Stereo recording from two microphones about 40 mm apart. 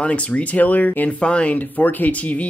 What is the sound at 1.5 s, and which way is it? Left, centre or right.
Speech, left.